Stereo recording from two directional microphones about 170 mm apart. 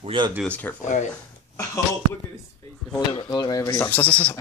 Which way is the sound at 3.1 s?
25° left (ahead or behind).